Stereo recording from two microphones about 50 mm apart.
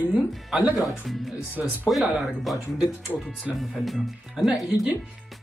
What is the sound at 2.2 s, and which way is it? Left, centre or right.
Speech, centre.